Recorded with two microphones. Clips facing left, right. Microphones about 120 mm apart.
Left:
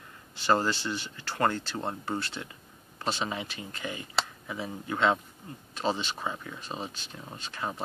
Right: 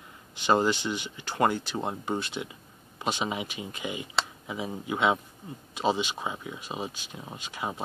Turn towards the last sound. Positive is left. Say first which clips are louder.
# right 1 dB
turn(degrees=-15)  # may be behind; listen again after turning